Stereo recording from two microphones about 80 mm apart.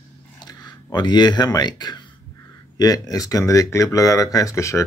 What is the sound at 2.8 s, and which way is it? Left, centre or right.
Speech, left.